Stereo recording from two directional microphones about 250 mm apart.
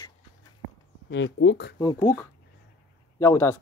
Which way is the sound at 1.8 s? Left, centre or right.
Centre.